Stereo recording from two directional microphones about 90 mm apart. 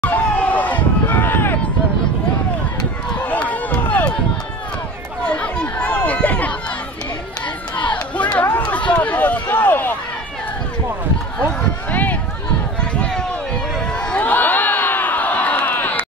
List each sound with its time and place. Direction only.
0.0 s run: 20° left (ahead or behind)
3.2 s run: 15° left (ahead or behind)
5.2 s a sound: 10° left (ahead or behind)
7.7 s crowd: 60° left (ahead or behind)
8.4 s run: 15° left (ahead or behind)
8.9 s a sound: 15° left (ahead or behind)
11.3 s a sound: 15° left (ahead or behind)
12.9 s run: 15° left (ahead or behind)
13.7 s crowd: 10° left (ahead or behind)